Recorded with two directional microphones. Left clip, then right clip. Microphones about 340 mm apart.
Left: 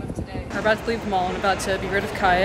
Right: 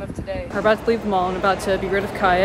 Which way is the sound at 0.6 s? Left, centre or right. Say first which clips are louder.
Right 4 dB; centre.